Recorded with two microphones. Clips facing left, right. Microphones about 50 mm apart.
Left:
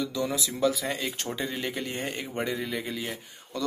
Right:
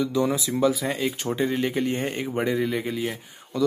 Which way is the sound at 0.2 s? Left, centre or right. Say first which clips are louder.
Right 4 dB; right.